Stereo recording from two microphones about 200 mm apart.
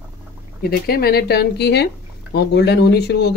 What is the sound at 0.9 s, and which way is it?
Speech, 50° left (ahead or behind).